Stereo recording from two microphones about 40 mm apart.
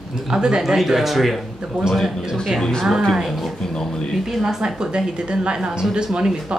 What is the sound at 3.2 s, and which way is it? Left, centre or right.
Speech, centre.